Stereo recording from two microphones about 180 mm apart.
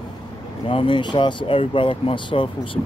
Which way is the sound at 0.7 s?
25° left (ahead or behind).